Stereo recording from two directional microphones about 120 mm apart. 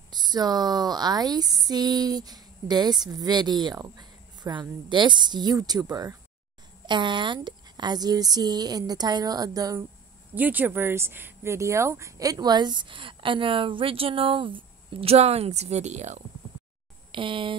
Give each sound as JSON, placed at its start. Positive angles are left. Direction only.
{"t": 0.1, "sound": "speech", "side_deg": -35}
{"t": 10.3, "sound": "speech", "side_deg": -15}
{"t": 17.1, "sound": "speech", "side_deg": -45}